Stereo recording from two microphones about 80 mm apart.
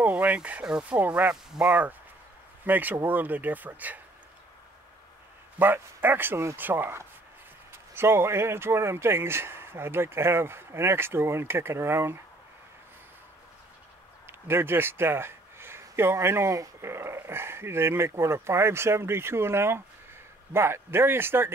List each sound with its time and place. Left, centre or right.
0.0 s speech: centre
2.6 s speech: right
5.6 s a man's voice: right
14.2 s a man's voice: right